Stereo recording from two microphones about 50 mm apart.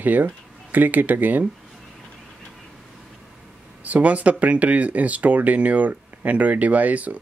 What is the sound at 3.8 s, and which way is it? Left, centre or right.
Speech, right.